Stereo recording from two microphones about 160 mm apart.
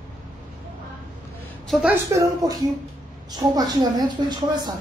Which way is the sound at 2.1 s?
20° right (ahead or behind).